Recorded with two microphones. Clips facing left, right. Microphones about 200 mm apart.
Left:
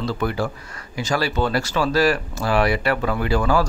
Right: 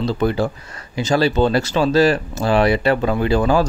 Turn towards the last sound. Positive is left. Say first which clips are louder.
# right 4 dB
turn(degrees=-20)  # may be behind; listen again after turning